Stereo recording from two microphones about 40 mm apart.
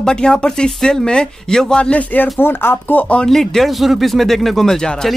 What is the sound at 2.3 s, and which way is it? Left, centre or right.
Speech, left.